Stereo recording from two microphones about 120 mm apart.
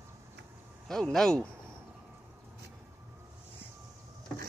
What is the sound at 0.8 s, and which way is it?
Speech, 5° left (ahead or behind).